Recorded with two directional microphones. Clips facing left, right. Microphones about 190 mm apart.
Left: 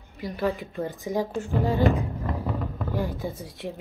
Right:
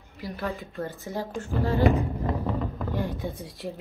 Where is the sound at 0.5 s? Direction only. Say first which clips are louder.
Left 4 dB; 15° left (ahead or behind).